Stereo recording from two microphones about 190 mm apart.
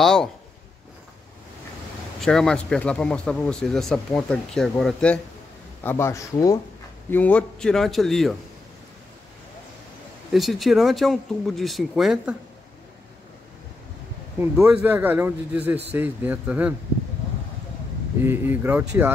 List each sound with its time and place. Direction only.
0.0 s speech: centre (ahead or behind)
2.1 s speech: 5° left (ahead or behind)
5.9 s speech: 15° left (ahead or behind)
10.3 s speech: centre (ahead or behind)
14.4 s a man's voice: 10° right (ahead or behind)
18.2 s a man's voice: 10° right (ahead or behind)